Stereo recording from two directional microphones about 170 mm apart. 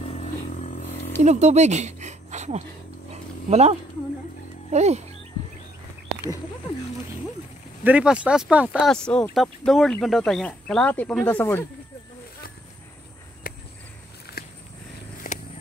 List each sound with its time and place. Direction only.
0.5 s a sound: 50° left (ahead or behind)
1.2 s speech: 40° right (ahead or behind)
3.1 s roaring cats: 40° right (ahead or behind)
4.7 s speech: 40° right (ahead or behind)
7.8 s speech: 5° right (ahead or behind)
8.9 s speech: 5° left (ahead or behind)
13.4 s a sound: 60° left (ahead or behind)
14.3 s a sound: 70° left (ahead or behind)
15.3 s walk: 45° left (ahead or behind)